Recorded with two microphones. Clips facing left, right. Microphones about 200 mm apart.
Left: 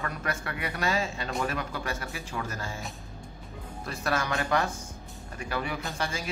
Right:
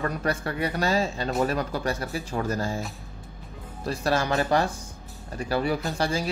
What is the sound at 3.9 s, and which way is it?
Speech, 30° right (ahead or behind).